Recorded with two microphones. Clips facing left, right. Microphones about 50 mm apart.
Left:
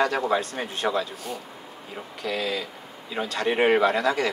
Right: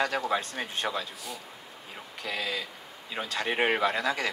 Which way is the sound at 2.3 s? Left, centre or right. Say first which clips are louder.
Left 5 dB; centre.